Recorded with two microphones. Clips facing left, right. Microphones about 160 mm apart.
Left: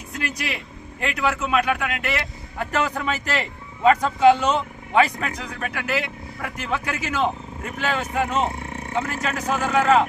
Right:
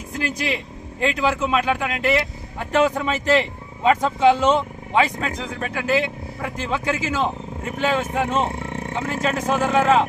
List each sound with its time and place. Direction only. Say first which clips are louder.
0.2 s speech: right 4 dB; 30° right (ahead or behind)